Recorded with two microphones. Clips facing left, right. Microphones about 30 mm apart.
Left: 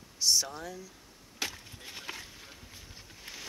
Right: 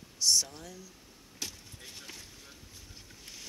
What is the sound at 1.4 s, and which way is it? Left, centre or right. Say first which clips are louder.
Wood: left 5 dB; left.